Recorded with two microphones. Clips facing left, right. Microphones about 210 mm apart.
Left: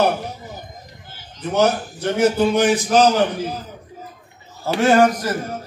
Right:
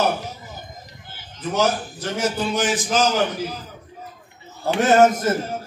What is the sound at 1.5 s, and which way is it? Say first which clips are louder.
A man's voice: left 3 dB; 60° left (ahead or behind).